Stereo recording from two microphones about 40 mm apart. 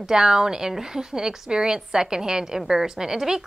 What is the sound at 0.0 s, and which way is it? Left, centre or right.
A woman's voice, centre.